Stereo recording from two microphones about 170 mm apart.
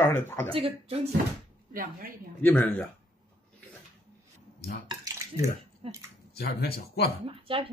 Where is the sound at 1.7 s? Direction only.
55° right (ahead or behind).